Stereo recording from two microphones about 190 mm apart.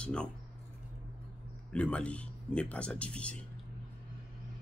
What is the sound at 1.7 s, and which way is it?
Speech, 5° left (ahead or behind).